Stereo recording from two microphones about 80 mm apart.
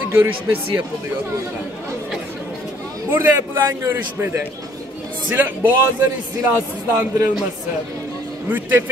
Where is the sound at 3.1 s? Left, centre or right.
Right.